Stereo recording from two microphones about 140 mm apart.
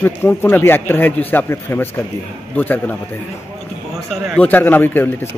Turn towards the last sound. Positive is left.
turn(degrees=15)  # may be behind; listen again after turning